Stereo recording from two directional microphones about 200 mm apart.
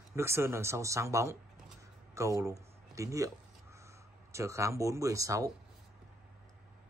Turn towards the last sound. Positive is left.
turn(degrees=-15)  # may be behind; listen again after turning